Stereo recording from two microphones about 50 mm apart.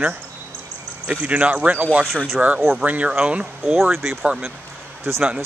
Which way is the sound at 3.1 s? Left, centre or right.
Right.